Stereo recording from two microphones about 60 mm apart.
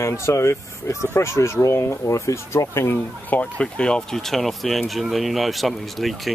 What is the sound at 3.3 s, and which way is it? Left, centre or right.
Speech, left.